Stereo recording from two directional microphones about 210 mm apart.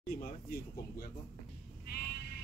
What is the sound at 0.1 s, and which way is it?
Speech, 45° left (ahead or behind).